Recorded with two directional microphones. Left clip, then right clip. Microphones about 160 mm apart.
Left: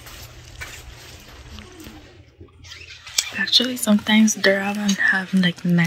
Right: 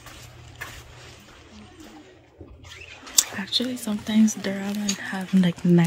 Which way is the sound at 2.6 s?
15° right (ahead or behind).